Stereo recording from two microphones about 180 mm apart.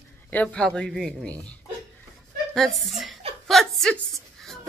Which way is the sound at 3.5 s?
Centre (ahead or behind).